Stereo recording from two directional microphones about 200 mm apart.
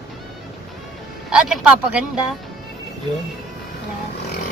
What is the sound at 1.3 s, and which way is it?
Speech, 5° right (ahead or behind).